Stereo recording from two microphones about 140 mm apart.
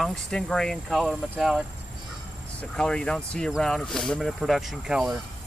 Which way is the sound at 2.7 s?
5° left (ahead or behind).